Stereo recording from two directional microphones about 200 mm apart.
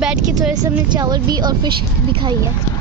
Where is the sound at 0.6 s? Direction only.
20° right (ahead or behind).